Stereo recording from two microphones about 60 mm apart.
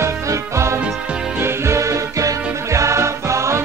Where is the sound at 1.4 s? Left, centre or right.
Right.